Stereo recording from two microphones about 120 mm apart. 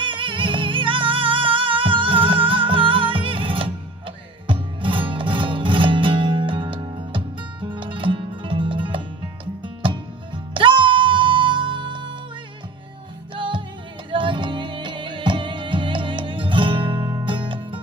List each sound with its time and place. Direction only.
0.0 s music: 45° right (ahead or behind)
13.4 s music: 45° right (ahead or behind)